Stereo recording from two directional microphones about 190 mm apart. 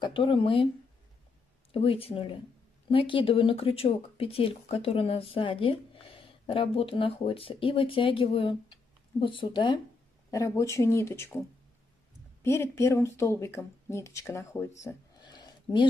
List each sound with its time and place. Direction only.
0.0 s speech: 25° left (ahead or behind)
1.7 s speech: 30° left (ahead or behind)
14.8 s a sound: 20° left (ahead or behind)